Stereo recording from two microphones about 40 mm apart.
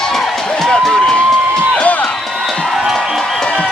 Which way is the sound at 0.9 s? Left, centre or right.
Centre.